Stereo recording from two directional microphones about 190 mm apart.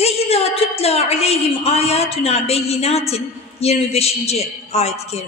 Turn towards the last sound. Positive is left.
turn(degrees=35)  # may be behind; listen again after turning